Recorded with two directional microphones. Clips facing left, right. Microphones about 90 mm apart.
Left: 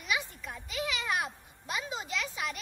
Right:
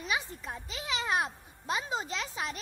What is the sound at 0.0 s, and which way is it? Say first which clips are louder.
A child's voice: even; 30° right (ahead or behind).